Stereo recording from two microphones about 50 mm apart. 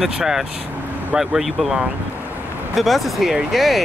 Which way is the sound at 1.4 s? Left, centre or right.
Right.